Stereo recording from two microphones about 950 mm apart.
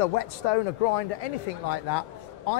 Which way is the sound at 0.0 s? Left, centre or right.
Left.